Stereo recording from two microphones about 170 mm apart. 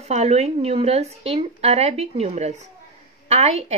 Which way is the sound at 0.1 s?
40° right (ahead or behind).